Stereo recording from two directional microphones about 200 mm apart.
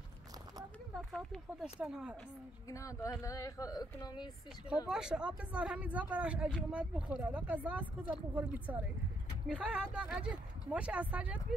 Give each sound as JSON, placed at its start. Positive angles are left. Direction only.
{"t": 1.1, "sound": "speech", "side_deg": 0}
{"t": 2.7, "sound": "speech", "side_deg": 15}
{"t": 4.8, "sound": "speech", "side_deg": -5}